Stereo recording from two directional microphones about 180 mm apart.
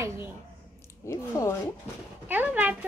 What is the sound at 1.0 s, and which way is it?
Speech, 15° left (ahead or behind).